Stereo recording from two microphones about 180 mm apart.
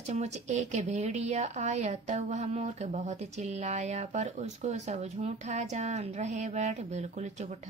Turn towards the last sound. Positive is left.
turn(degrees=-40)  # may be behind; listen again after turning